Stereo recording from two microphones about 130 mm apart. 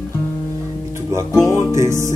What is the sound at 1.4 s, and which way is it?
Music, 20° right (ahead or behind).